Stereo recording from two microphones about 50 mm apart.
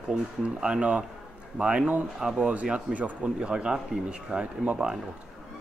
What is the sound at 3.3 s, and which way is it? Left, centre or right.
Speech, centre.